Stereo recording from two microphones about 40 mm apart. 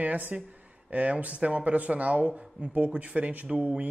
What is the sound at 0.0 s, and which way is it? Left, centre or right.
Speech, right.